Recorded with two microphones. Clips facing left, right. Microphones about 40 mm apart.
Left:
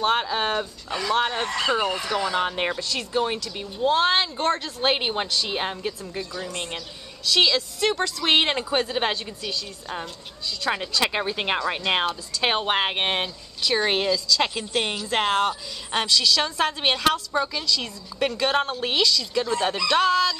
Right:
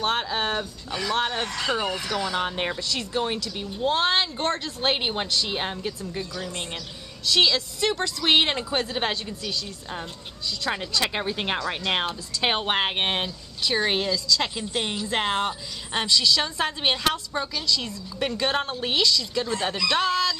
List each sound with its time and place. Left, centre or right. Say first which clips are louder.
0.0 s a woman's voice: left 3 dB; centre
2.0 s speech: left 2 dB; left
2.3 s a woman's voice: left 2 dB; centre
12.4 s a woman's voice: left 1 dB; centre
13.6 s a woman's voice: left 1 dB; centre
13.8 s a woman's voice: left 2 dB; centre